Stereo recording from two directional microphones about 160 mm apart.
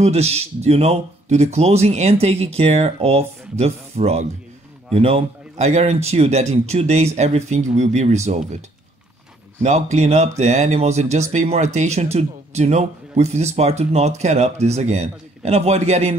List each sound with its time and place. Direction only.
0.0 s speech: 40° right (ahead or behind)